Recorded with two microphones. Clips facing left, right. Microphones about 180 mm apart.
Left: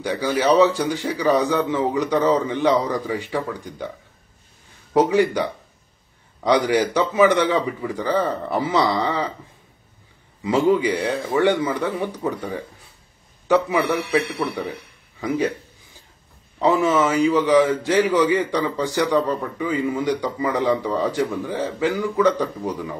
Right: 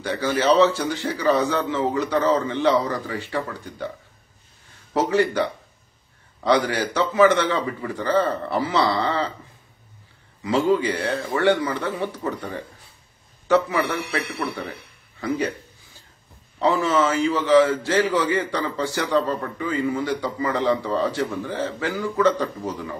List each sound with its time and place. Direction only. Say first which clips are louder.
0.0 s a man's voice: left 1 dB; 15° left (ahead or behind)
4.9 s a man's voice: left 3 dB; 15° left (ahead or behind)
10.4 s a man's voice: left 2 dB; 15° left (ahead or behind)
13.5 s a man's voice: left 2 dB; 15° left (ahead or behind)
16.5 s a man's voice: left 2 dB; 15° left (ahead or behind)